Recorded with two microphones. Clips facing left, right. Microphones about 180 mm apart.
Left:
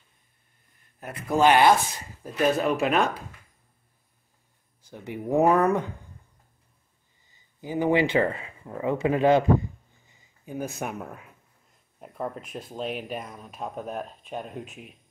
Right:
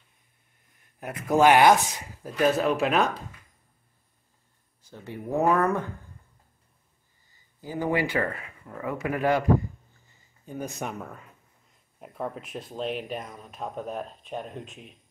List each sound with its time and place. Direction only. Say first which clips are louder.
0.9 s speech: right 2 dB; 15° right (ahead or behind)
2.2 s speech: even; centre (ahead or behind)
4.8 s speech: left 4 dB; 15° left (ahead or behind)
7.2 s speech: left 3 dB; 20° left (ahead or behind)